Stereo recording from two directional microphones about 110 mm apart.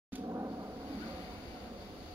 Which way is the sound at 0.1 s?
25° right (ahead or behind).